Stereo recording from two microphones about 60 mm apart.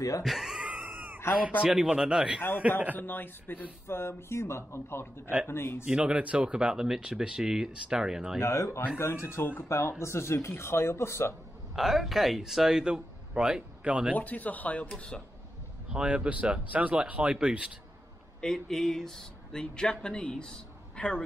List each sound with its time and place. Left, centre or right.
0.2 s speech: centre
0.7 s wheeze: centre
1.2 s speech: left
1.7 s speech: centre
3.0 s speech: left
3.8 s speech: left
5.9 s speech: centre
8.4 s speech: left
11.7 s speech: centre
14.1 s speech: left
14.9 s speech: centre
15.9 s speech: centre
18.4 s speech: centre